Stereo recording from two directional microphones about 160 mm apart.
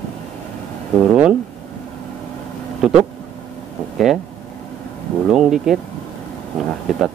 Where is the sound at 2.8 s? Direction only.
5° right (ahead or behind).